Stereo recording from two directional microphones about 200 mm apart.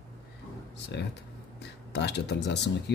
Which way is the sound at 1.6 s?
55° left (ahead or behind).